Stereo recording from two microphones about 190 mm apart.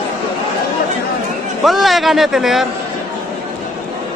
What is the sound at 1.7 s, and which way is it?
A man's voice, centre (ahead or behind).